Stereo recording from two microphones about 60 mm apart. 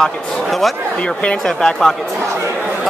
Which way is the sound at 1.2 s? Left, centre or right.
Centre.